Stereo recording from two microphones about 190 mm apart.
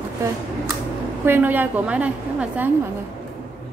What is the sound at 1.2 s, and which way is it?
A woman's voice, 10° right (ahead or behind).